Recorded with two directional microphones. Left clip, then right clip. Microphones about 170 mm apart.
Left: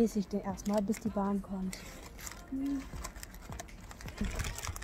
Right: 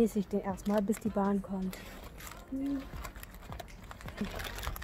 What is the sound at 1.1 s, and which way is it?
Speech, 20° right (ahead or behind).